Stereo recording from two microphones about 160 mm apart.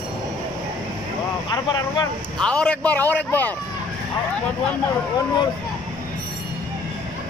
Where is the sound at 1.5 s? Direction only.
25° left (ahead or behind).